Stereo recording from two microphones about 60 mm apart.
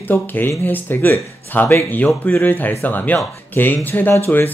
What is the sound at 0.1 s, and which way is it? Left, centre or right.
Speech, left.